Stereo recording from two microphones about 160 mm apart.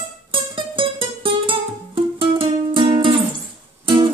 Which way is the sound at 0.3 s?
30° right (ahead or behind).